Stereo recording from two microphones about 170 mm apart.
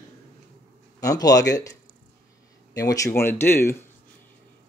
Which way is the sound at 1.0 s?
20° left (ahead or behind).